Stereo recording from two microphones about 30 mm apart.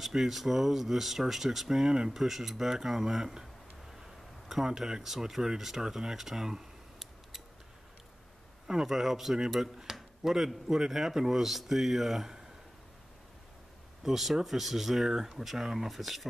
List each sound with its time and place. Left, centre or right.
0.1 s speech: centre
1.7 s speech: right
2.0 s speech: centre
4.6 s speech: centre
8.8 s speech: centre
11.4 s speech: centre
14.0 s speech: centre